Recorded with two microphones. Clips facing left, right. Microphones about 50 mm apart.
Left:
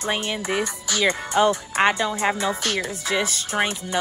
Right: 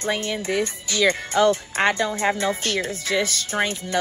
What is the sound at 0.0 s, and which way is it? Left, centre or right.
Speech, left.